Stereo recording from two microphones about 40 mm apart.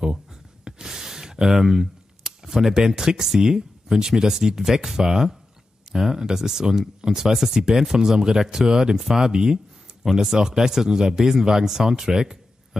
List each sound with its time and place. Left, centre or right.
0.0 s speech: centre